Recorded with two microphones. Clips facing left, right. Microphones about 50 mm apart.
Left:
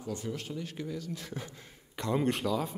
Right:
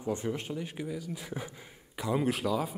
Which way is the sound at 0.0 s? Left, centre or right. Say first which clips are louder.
Right 4 dB; right.